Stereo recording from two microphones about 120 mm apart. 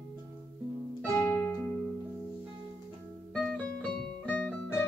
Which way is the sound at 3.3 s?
5° left (ahead or behind).